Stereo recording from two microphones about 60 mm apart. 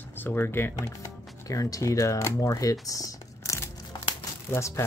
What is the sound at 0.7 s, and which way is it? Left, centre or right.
Speech, left.